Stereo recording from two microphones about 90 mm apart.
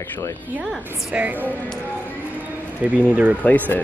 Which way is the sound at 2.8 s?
15° right (ahead or behind).